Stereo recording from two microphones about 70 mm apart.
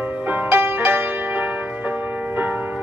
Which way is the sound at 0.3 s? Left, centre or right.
Right.